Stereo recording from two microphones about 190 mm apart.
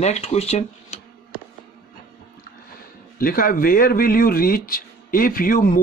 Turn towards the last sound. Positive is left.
turn(degrees=50)  # may be behind; listen again after turning